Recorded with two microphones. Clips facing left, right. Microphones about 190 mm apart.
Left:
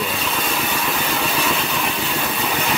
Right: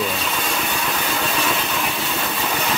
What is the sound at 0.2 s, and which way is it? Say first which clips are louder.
Vehicle: left 1 dB; centre (ahead or behind).